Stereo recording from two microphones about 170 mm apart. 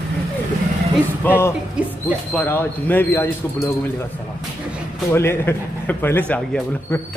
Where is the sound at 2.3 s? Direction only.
10° left (ahead or behind).